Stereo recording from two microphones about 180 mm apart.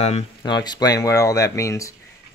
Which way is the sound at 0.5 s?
20° left (ahead or behind).